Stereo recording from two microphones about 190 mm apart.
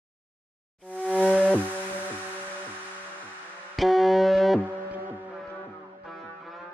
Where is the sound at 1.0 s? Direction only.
Centre (ahead or behind).